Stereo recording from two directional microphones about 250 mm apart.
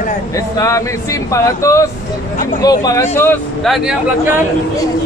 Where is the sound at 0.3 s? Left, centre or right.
Centre.